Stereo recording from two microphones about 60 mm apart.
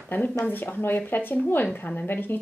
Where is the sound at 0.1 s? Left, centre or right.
Left.